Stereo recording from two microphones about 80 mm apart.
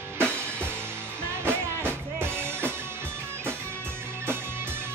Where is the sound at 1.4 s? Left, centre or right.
Right.